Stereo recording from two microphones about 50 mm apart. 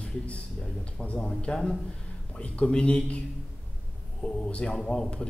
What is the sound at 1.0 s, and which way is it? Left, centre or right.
A man's voice, left.